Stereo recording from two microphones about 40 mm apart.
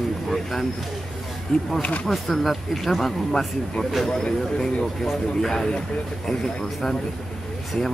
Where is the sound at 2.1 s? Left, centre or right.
Centre.